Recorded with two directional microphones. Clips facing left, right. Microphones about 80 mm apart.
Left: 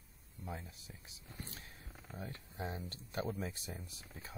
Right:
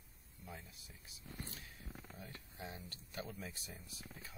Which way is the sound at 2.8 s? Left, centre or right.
Left.